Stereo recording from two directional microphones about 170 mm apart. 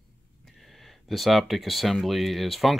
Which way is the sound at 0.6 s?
Centre (ahead or behind).